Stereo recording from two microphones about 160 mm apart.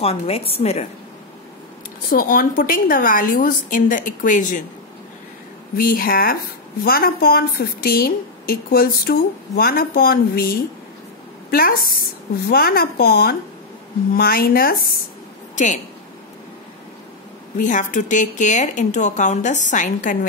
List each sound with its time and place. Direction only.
0.0 s a woman's voice: 40° left (ahead or behind)
2.0 s a woman's voice: 65° left (ahead or behind)
5.8 s a woman's voice: 65° left (ahead or behind)
15.5 s a woman's voice: 50° left (ahead or behind)
17.6 s speech: 55° left (ahead or behind)